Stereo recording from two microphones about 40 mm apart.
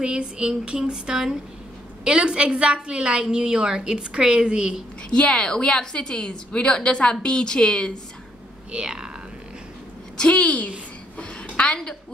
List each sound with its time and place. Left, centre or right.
0.0 s a woman's voice: right
5.1 s a woman's voice: left
8.7 s speech: centre
10.1 s a woman's voice: left
11.5 s a sound: left